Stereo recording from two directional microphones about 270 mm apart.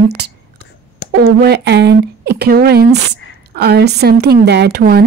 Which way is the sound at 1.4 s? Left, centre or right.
Right.